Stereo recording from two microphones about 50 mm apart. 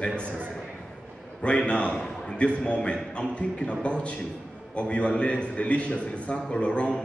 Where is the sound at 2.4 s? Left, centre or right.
Left.